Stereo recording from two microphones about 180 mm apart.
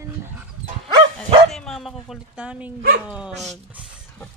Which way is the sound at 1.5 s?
Centre (ahead or behind).